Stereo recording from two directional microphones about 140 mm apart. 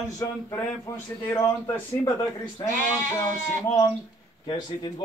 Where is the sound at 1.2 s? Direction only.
20° left (ahead or behind).